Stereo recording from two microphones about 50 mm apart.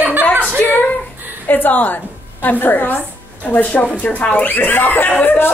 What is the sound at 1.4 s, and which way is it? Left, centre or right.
A woman's voice, left.